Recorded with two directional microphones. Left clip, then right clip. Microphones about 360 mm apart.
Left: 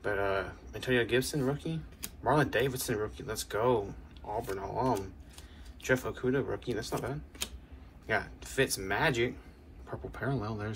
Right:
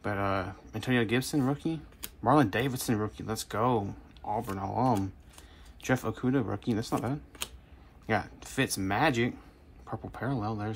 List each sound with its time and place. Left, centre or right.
0.0 s speech: centre